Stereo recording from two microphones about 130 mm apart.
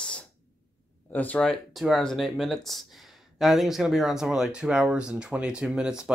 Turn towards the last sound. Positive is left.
turn(degrees=-5)  # may be behind; listen again after turning